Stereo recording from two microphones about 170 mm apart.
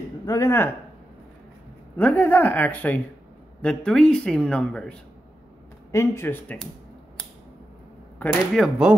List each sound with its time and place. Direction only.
0.3 s a woman's voice: 15° left (ahead or behind)
2.0 s a woman's voice: 10° left (ahead or behind)
5.9 s a woman's voice: 15° left (ahead or behind)
8.2 s a woman's voice: 10° left (ahead or behind)